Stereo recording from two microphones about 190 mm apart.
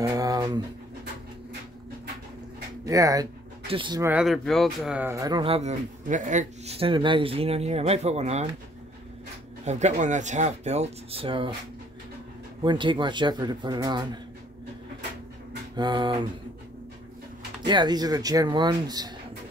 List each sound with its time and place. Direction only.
0.0 s dog: 20° right (ahead or behind)
2.8 s speech: 20° right (ahead or behind)
4.0 s speech: 5° right (ahead or behind); by 8.5 s 35° right (ahead or behind)
9.7 s speech: 40° right (ahead or behind)
12.6 s speech: 25° right (ahead or behind)
15.7 s speech: 25° right (ahead or behind)
17.6 s speech: 20° right (ahead or behind)